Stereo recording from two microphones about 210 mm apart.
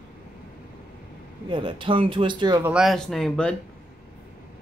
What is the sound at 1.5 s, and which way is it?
Speech, 25° right (ahead or behind).